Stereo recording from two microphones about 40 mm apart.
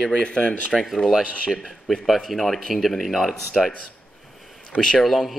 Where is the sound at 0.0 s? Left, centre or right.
Left.